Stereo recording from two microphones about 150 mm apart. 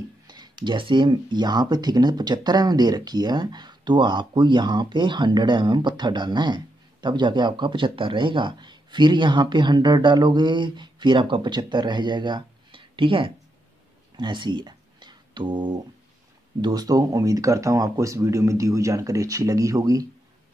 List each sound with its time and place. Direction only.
0.3 s speech: 30° right (ahead or behind)
14.1 s a sound: 30° right (ahead or behind)
16.6 s speech: 25° right (ahead or behind)